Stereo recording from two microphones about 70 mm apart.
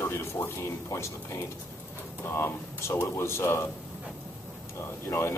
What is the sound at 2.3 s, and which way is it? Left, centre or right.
Speech, left.